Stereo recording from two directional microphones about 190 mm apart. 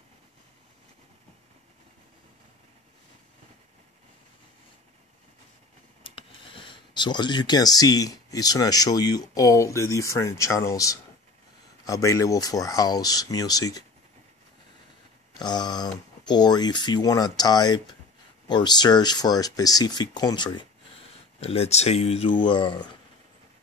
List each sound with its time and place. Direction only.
6.0 s speech: 25° left (ahead or behind)
15.3 s speech: 20° left (ahead or behind)